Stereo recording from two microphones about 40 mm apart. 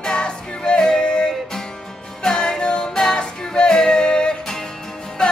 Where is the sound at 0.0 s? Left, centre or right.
Left.